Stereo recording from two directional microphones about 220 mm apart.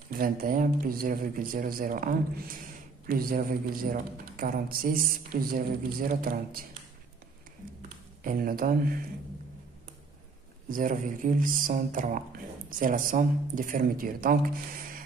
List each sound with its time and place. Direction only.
0.1 s a man's voice: 40° right (ahead or behind)
8.2 s a man's voice: 40° right (ahead or behind)
10.7 s a man's voice: 35° right (ahead or behind)